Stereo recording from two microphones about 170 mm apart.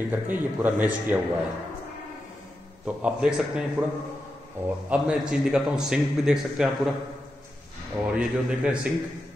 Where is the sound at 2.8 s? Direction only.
5° right (ahead or behind).